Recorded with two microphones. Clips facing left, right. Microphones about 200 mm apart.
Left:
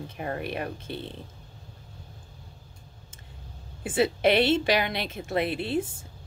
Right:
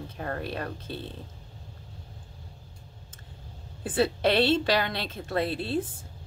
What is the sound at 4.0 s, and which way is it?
A woman's voice, 15° left (ahead or behind).